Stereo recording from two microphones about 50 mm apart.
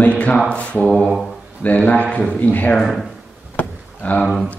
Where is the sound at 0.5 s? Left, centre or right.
Left.